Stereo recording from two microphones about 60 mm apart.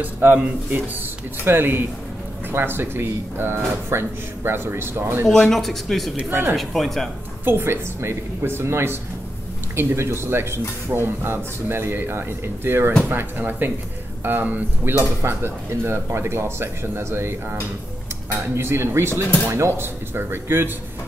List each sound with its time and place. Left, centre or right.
0.0 s speech: right
1.4 s speech: right
5.3 s speech: centre
7.4 s speech: right
18.6 s speech: right